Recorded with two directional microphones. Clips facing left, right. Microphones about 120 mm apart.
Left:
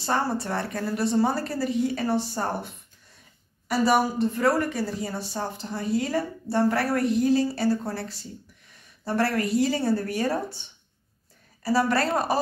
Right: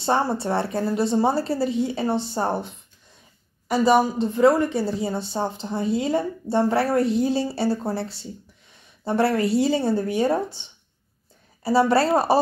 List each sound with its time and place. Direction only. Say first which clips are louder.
0.0 s a woman's voice: right 4 dB; 25° right (ahead or behind)
3.6 s a woman's voice: right 4 dB; 20° right (ahead or behind)
11.6 s a woman's voice: right 5 dB; 25° right (ahead or behind)